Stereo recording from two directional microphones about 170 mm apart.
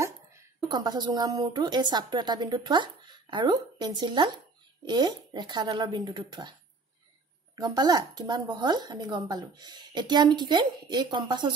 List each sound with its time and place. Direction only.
0.0 s speech: 20° right (ahead or behind)
7.5 s speech: 25° right (ahead or behind)